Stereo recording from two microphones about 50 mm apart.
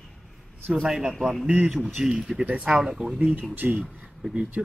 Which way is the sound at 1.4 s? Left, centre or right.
Right.